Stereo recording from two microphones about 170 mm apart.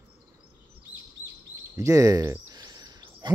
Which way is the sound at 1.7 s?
20° right (ahead or behind).